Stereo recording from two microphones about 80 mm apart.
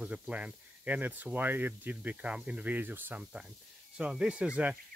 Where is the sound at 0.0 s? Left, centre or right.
Centre.